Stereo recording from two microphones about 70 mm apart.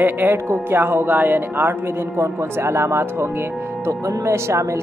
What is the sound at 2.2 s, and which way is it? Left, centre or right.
Speech, right.